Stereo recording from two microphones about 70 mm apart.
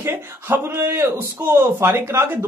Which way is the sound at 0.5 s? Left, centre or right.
Right.